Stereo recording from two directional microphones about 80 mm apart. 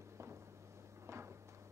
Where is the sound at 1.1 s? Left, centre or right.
Right.